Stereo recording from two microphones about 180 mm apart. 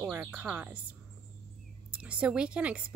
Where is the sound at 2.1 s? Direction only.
5° right (ahead or behind).